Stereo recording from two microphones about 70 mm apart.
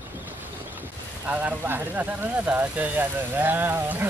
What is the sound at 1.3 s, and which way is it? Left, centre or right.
Speech, right.